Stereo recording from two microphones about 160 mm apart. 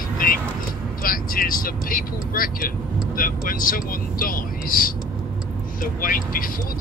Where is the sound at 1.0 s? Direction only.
60° left (ahead or behind).